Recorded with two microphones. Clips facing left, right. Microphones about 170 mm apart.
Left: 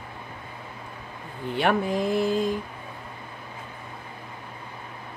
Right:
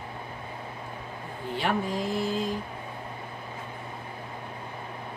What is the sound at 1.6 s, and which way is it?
Speech, 60° left (ahead or behind).